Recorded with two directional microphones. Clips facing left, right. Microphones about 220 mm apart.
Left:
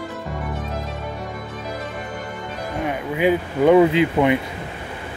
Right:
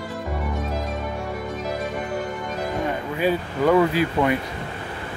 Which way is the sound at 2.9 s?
15° left (ahead or behind).